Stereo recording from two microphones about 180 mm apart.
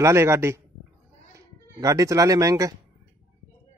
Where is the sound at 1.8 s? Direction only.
20° right (ahead or behind).